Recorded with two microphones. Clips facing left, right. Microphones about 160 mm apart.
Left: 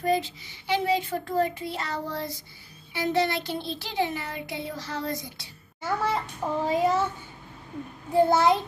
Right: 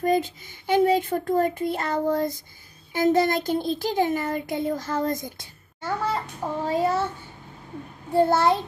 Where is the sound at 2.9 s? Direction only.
45° right (ahead or behind).